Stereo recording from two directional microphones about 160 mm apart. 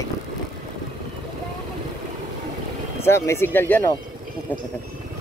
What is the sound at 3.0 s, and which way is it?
Speech, 15° left (ahead or behind).